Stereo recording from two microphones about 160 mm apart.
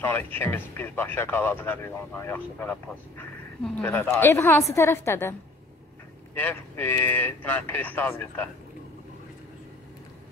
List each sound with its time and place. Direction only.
0.0 s speech: 10° left (ahead or behind)
6.3 s speech: 10° left (ahead or behind)